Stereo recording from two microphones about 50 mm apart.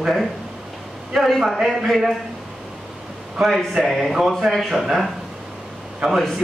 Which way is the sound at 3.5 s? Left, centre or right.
Centre.